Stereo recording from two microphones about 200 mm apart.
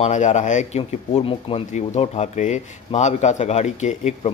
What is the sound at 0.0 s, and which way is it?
Speech, 35° left (ahead or behind).